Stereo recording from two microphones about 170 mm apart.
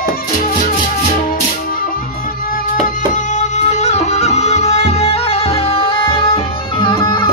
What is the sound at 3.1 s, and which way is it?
Music, 45° left (ahead or behind).